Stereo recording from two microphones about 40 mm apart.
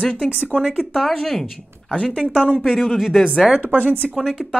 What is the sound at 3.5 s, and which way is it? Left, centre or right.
Speech, right.